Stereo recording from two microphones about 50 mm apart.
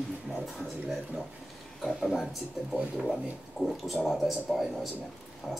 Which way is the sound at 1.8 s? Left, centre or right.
Centre.